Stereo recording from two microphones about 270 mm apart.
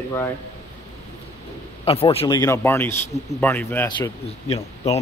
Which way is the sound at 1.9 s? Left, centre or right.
Left.